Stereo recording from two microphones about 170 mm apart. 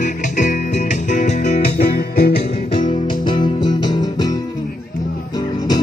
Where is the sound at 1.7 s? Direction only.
60° left (ahead or behind).